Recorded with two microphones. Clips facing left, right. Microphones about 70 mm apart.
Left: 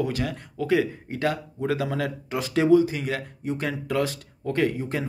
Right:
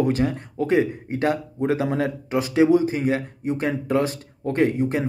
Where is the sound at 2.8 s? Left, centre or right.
Right.